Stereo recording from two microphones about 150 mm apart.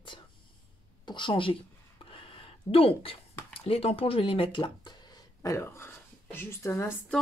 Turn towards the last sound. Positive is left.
turn(degrees=15)  # may be behind; listen again after turning